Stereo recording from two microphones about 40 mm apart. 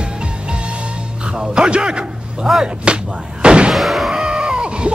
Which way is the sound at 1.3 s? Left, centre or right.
Right.